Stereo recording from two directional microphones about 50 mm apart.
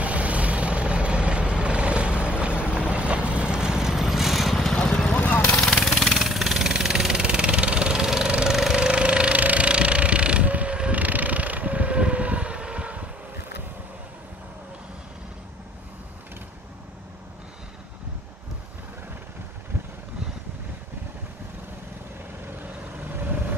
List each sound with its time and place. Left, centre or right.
0.0 s vehicle: right; by 4.6 s centre
4.8 s vehicle: centre
5.1 s a sound: left
5.9 s vehicle: centre
8.5 s engine: centre
8.8 s vehicle: right
22.9 s vehicle: right